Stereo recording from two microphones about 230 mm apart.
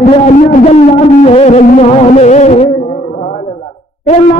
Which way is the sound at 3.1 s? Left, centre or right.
Left.